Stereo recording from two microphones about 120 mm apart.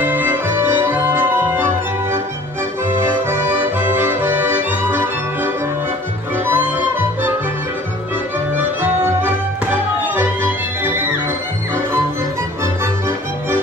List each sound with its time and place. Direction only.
0.0 s music: 15° right (ahead or behind)
3.0 s accordion: 20° right (ahead or behind)
6.3 s music: 20° right (ahead or behind)
8.5 s music: 15° right (ahead or behind)